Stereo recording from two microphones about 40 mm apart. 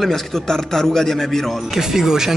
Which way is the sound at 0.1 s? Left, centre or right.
Centre.